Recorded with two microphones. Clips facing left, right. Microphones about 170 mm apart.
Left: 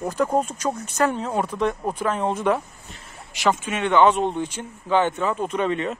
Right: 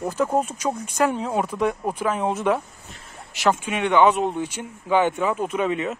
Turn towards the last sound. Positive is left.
turn(degrees=-5)  # may be behind; listen again after turning